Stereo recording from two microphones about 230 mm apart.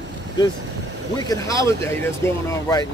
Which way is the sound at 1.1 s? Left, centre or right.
Centre.